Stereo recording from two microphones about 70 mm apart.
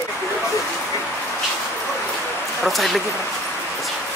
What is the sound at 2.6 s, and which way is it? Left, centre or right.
Speech, centre.